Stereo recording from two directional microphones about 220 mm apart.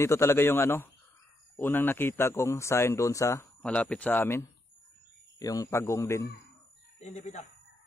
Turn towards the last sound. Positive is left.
turn(degrees=30)  # may be behind; listen again after turning